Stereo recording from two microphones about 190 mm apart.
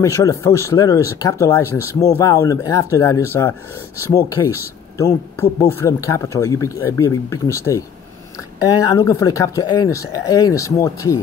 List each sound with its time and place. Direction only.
0.0 s speech: 15° left (ahead or behind)